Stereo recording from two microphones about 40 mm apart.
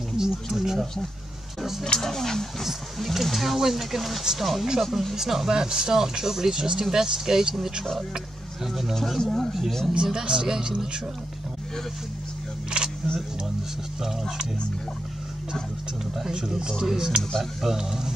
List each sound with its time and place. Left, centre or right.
0.2 s a sound: centre
0.5 s speech: centre
1.6 s a sound: centre
1.9 s speech: centre
2.6 s speech: centre
4.8 s speech: centre
5.1 s speech: centre
8.9 s speech: centre
10.0 s speech: centre
12.7 s single-lens reflex camera: right
16.2 s speech: centre
17.2 s speech: centre
17.6 s speech: centre